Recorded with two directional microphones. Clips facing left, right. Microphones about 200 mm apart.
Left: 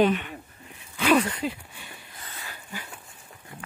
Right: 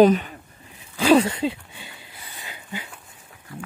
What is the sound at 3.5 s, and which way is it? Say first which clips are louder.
Speech: right 7 dB; 20° left (ahead or behind).